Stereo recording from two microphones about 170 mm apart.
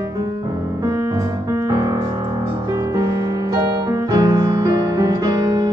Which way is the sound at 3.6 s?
20° right (ahead or behind).